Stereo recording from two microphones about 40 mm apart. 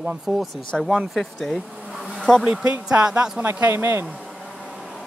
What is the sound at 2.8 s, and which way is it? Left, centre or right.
Speech, right.